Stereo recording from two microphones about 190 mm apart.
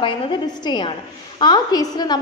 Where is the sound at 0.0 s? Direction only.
25° left (ahead or behind).